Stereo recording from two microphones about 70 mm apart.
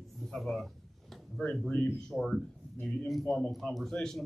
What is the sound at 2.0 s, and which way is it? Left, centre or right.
Speech, centre.